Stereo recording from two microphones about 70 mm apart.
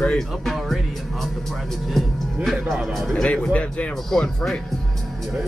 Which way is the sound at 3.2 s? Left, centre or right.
Centre.